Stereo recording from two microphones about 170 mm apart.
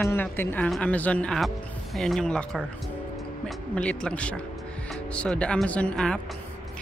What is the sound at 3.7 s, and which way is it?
Speech, 5° left (ahead or behind).